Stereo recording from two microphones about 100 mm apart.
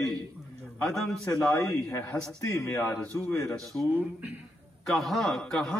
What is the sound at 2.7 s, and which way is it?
Speech, 30° left (ahead or behind).